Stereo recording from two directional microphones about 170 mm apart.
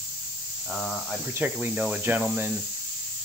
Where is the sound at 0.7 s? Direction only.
Centre (ahead or behind).